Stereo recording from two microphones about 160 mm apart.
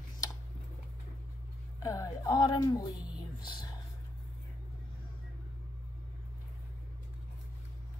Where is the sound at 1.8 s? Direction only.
20° left (ahead or behind).